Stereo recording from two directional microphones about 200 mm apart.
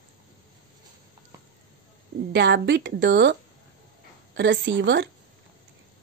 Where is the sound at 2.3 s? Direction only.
60° right (ahead or behind).